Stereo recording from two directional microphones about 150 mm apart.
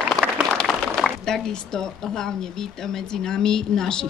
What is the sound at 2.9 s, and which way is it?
Speech, 5° left (ahead or behind).